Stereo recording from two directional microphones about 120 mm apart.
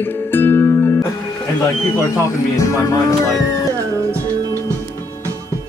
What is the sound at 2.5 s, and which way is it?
Music, 25° left (ahead or behind).